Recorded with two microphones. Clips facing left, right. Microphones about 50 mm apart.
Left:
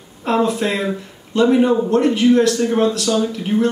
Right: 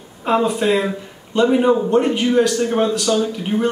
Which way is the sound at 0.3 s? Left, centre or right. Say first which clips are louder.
Right 1 dB; centre.